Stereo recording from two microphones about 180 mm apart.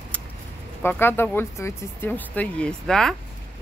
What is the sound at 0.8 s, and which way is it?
Speech, 10° left (ahead or behind).